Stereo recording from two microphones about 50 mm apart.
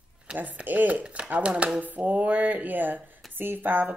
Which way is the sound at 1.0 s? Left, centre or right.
Centre.